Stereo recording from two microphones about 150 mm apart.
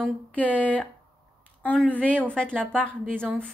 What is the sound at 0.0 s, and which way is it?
A woman's voice, 10° left (ahead or behind).